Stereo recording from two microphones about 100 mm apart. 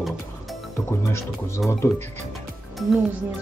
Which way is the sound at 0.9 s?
25° left (ahead or behind).